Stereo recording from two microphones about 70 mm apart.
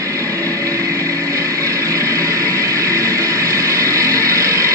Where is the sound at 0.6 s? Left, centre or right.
Right.